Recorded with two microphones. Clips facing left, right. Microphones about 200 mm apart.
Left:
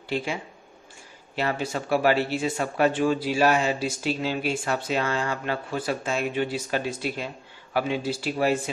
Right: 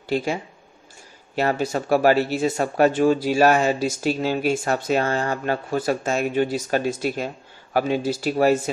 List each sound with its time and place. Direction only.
0.1 s speech: 40° right (ahead or behind)